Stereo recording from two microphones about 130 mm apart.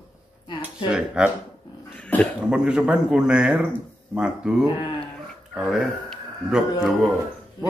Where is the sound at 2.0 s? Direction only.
10° left (ahead or behind).